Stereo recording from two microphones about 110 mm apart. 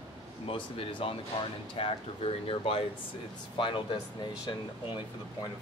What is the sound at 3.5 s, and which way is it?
Speech, 50° left (ahead or behind).